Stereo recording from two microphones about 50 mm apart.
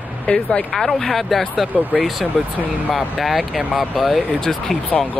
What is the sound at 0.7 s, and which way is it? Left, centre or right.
Speech, centre.